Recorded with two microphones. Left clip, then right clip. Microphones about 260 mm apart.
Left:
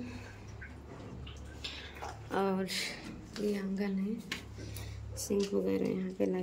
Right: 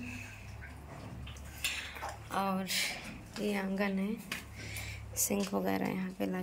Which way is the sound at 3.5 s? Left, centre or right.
Centre.